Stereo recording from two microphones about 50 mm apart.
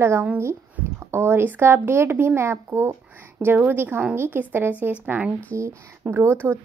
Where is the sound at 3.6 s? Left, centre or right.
Right.